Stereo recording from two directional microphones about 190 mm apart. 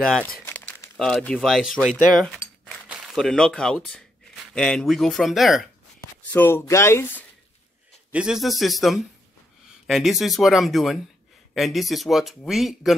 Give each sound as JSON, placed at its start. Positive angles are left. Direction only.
{"t": 0.0, "sound": "speech", "side_deg": 5}
{"t": 2.1, "sound": "a sound", "side_deg": 0}
{"t": 4.6, "sound": "speech", "side_deg": 5}
{"t": 6.3, "sound": "speech", "side_deg": 10}
{"t": 8.1, "sound": "speech", "side_deg": -5}